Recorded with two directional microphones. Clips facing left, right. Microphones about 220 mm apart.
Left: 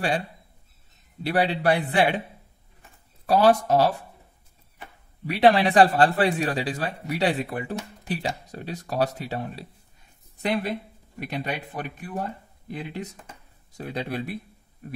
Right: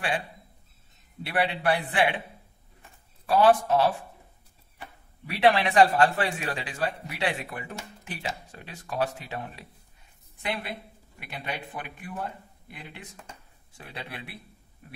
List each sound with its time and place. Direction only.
1.2 s a man's voice: 40° left (ahead or behind)
3.3 s a man's voice: 40° left (ahead or behind)
5.2 s a man's voice: 35° left (ahead or behind)
8.0 s a sound: 35° left (ahead or behind)
8.5 s a man's voice: 40° left (ahead or behind)